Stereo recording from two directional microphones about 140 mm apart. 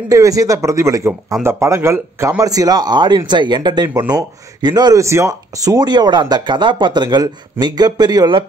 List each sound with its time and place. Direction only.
0.1 s speech: 25° right (ahead or behind)